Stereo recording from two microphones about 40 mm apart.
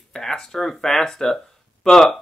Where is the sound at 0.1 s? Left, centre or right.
Centre.